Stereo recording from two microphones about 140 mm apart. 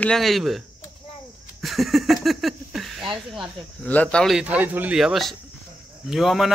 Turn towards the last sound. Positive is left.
turn(degrees=0)  # may be behind; listen again after turning